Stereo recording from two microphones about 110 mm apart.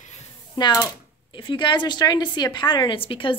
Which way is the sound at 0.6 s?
35° left (ahead or behind).